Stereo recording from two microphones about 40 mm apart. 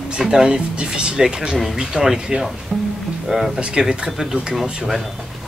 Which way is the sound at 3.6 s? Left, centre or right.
Centre.